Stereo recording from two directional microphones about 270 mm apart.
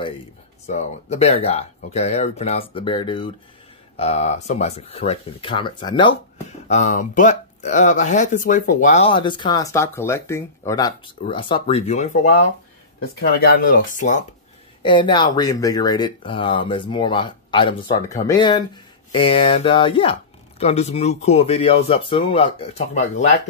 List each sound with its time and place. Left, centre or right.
0.7 s speech: left
14.8 s speech: centre